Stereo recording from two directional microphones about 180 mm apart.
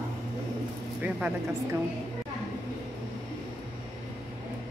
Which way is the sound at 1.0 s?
5° right (ahead or behind).